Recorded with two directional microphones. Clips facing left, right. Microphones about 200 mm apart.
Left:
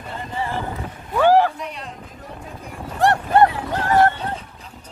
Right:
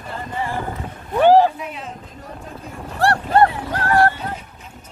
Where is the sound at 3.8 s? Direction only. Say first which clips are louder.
Even; 20° left (ahead or behind).